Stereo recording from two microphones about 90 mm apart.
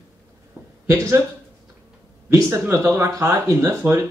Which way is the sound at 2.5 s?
35° right (ahead or behind).